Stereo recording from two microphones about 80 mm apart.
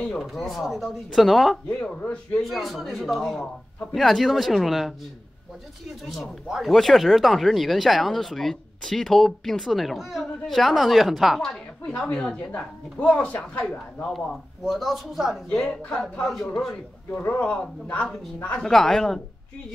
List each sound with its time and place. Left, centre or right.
0.2 s speech: centre
1.7 s speech: centre
2.4 s speech: centre
6.0 s speech: centre
14.6 s speech: centre
15.5 s speech: centre
17.1 s speech: left
18.7 s speech: centre